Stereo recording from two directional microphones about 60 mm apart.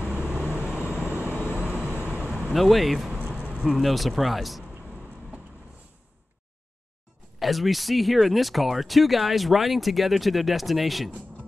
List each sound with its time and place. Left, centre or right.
0.1 s vehicle: right
2.5 s speech: centre
3.3 s vehicle: right
3.6 s speech: centre
7.3 s speech: centre